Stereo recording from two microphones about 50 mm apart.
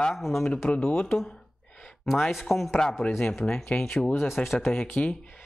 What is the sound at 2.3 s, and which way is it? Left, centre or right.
Speech, centre.